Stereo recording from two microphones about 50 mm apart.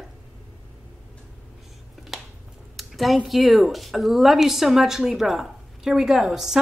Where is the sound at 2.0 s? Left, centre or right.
Centre.